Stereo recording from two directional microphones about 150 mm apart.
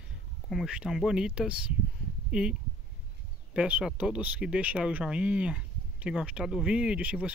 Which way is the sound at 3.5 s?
10° right (ahead or behind).